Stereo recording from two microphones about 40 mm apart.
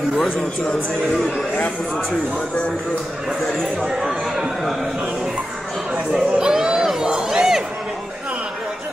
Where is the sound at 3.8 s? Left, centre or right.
Centre.